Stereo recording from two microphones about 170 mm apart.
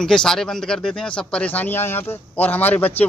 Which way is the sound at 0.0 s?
5° left (ahead or behind).